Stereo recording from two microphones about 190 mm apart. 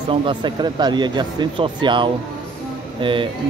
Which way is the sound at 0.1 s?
25° right (ahead or behind).